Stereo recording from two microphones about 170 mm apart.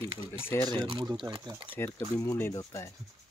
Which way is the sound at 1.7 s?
15° left (ahead or behind).